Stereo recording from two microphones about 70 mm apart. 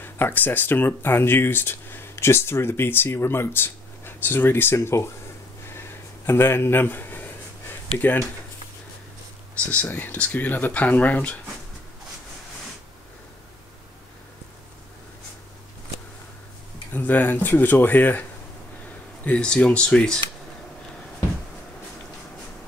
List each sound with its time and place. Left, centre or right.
0.0 s speech: left
5.7 s a sound: left
9.7 s speech: left
16.9 s speech: left
19.2 s speech: centre